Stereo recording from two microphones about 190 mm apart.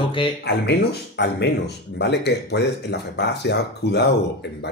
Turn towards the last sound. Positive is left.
turn(degrees=65)  # may be behind; listen again after turning